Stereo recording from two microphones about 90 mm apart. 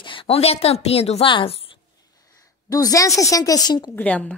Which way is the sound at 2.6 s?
45° left (ahead or behind).